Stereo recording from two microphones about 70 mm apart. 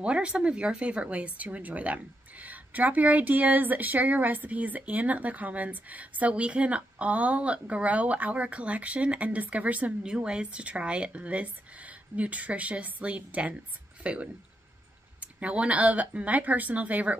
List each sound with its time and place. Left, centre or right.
0.0 s speech: centre